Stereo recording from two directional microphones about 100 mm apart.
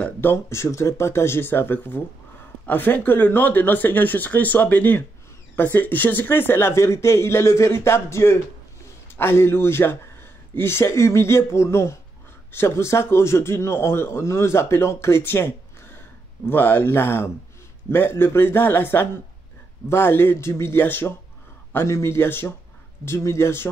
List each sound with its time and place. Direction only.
0.0 s a man's voice: 20° left (ahead or behind)